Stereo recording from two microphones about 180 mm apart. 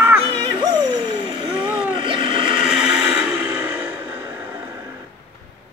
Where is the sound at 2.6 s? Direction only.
5° right (ahead or behind).